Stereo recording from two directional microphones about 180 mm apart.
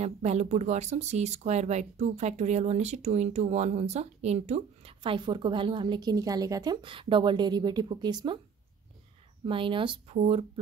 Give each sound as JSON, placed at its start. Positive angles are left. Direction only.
{"t": 0.0, "sound": "speech", "side_deg": -35}
{"t": 9.5, "sound": "speech", "side_deg": -30}